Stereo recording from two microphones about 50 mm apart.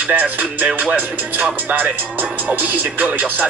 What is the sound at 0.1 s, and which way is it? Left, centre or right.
Speech, right.